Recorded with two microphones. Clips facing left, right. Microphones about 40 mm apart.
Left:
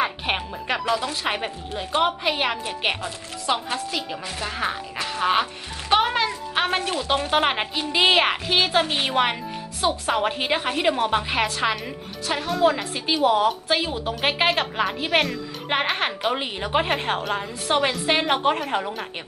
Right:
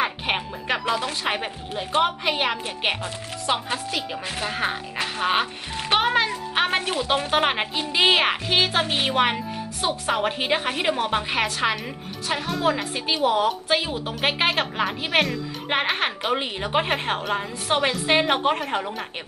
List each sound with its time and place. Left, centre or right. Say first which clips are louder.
0.0 s music: even; centre
0.8 s a woman's voice: left 2 dB; centre
1.2 s a woman's voice: even; centre
5.0 s music: left 1 dB; centre
5.9 s a woman's voice: even; centre